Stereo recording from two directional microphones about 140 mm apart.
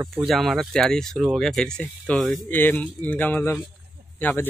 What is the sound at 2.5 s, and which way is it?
Speech, 15° left (ahead or behind).